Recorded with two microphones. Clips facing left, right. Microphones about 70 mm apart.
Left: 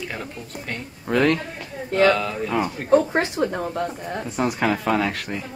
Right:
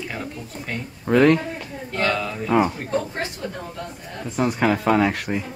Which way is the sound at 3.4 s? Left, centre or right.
Left.